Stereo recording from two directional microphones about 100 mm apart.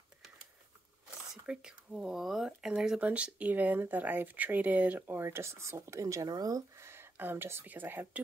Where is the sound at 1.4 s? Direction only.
5° right (ahead or behind); by 6.9 s 40° right (ahead or behind).